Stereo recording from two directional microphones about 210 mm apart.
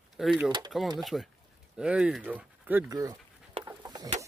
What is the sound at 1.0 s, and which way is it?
Speech, centre (ahead or behind).